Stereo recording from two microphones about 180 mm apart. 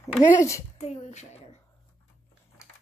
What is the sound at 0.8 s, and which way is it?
Speech, 40° left (ahead or behind).